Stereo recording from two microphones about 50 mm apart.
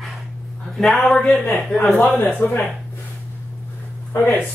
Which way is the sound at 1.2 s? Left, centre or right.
Centre.